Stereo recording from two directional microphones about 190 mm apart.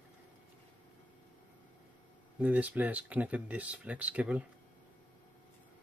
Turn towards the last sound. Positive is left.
turn(degrees=-5)  # may be behind; listen again after turning